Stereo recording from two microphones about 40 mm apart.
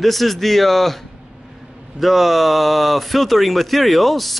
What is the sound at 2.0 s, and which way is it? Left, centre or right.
Speech, centre.